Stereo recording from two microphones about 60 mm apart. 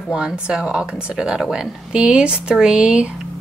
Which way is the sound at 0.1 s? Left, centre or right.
Centre.